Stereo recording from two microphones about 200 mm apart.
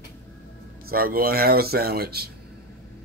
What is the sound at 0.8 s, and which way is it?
Speech, 50° right (ahead or behind).